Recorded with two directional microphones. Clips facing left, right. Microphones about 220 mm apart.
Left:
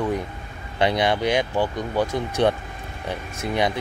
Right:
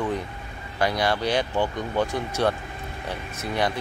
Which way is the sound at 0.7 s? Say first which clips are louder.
Left 3 dB; 20° left (ahead or behind).